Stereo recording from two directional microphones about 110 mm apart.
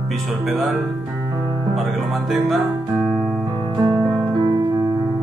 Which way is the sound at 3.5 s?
45° right (ahead or behind).